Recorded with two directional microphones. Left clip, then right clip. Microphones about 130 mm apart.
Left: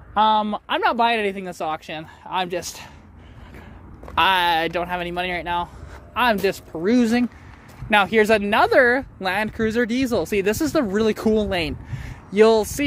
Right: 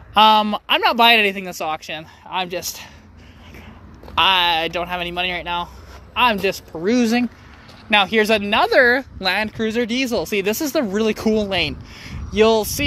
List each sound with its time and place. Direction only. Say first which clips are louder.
0.1 s speech: right 5 dB; centre (ahead or behind)
0.6 s speech: right 4 dB; 15° left (ahead or behind); by 2.9 s 45° left (ahead or behind)
4.1 s speech: right 2 dB; 35° left (ahead or behind)
9.5 s speech: even; 50° left (ahead or behind); by 11.7 s 35° left (ahead or behind)
12.3 s speech: even; 45° left (ahead or behind)